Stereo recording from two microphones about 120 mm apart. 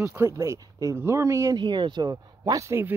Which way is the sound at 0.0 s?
20° right (ahead or behind).